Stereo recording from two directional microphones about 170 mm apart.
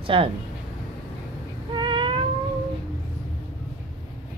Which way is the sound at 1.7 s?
30° right (ahead or behind).